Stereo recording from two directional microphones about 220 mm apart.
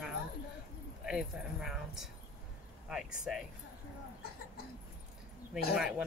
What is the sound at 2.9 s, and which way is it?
Speech, centre (ahead or behind).